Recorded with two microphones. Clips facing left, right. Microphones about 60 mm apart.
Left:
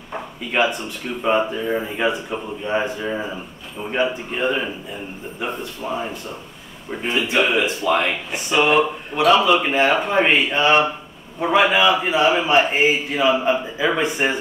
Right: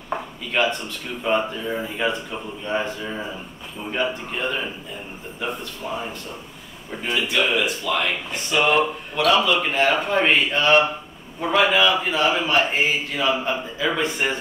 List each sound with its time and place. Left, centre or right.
0.5 s a man's voice: centre
5.8 s a man's voice: centre; by 8.1 s left
8.3 s a man's voice: centre